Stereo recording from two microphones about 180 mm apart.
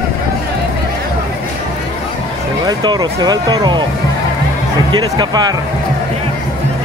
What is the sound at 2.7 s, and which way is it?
Speech, 20° right (ahead or behind).